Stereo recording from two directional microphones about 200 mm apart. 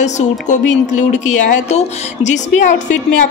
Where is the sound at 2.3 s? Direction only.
35° left (ahead or behind).